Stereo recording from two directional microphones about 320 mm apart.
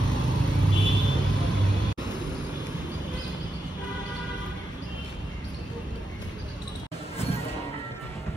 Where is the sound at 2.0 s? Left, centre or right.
Centre.